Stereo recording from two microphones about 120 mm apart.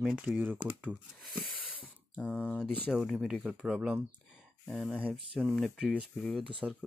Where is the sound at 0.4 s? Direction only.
15° right (ahead or behind).